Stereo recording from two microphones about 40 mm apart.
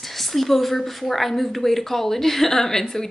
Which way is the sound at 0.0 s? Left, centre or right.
Centre.